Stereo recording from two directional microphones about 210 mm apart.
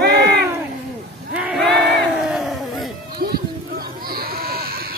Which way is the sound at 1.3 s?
5° right (ahead or behind).